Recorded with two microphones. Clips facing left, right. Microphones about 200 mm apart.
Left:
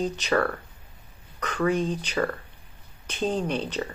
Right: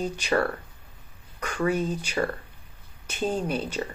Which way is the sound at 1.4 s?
10° right (ahead or behind).